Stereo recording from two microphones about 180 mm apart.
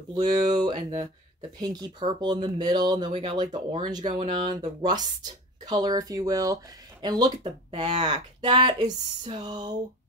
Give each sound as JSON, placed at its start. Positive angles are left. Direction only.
{"t": 0.1, "sound": "speech", "side_deg": -20}